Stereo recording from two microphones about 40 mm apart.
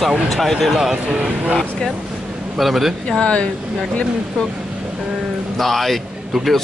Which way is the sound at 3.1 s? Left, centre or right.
Left.